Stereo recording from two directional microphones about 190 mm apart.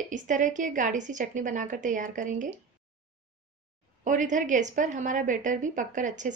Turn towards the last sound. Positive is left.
turn(degrees=-40)  # may be behind; listen again after turning